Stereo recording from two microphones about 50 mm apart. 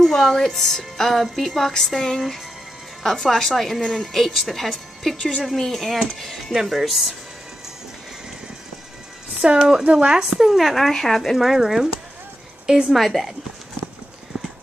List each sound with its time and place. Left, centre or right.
0.0 s a woman's voice: centre
9.4 s speech: centre
10.3 s a woman's voice: centre
11.3 s a woman's voice: centre
12.9 s a woman's voice: centre